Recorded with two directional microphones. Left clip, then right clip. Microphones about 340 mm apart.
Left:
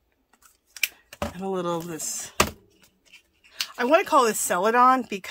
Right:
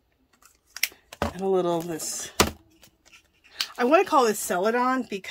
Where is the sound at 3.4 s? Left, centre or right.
Centre.